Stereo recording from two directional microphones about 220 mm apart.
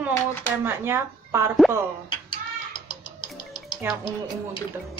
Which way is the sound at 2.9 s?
20° left (ahead or behind).